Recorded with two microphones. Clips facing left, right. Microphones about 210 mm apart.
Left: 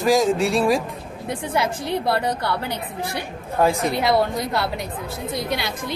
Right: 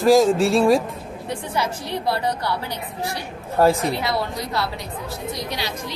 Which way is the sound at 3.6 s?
Centre (ahead or behind).